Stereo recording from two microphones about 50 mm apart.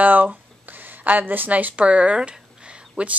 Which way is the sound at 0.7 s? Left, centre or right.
Right.